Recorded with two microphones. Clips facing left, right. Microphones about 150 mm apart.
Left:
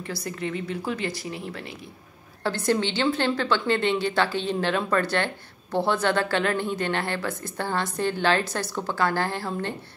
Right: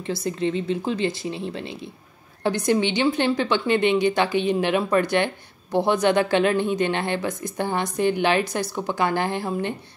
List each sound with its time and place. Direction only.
0.0 s a woman's voice: 25° right (ahead or behind)